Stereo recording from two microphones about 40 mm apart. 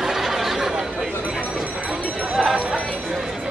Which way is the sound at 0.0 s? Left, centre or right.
Centre.